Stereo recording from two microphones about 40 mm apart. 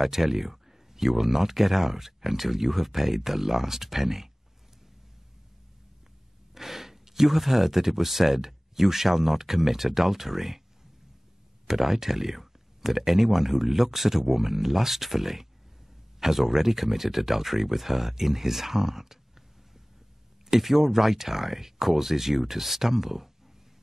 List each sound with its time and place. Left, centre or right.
0.0 s speech: centre
6.5 s speech: centre
11.6 s speech: centre
20.4 s speech: centre